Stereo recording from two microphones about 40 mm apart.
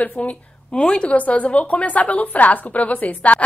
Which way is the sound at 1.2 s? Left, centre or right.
Left.